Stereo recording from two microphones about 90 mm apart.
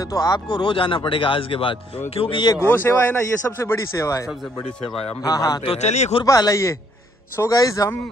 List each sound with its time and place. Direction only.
0.0 s a man's voice: 45° left (ahead or behind); by 2.4 s 90° left
2.7 s a man's voice: 25° left (ahead or behind)
5.2 s speech: 45° left (ahead or behind)
5.6 s speech: 80° left
6.2 s speech: 40° left (ahead or behind)